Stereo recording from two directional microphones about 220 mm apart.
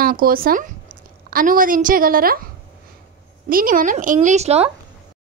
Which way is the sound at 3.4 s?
40° right (ahead or behind).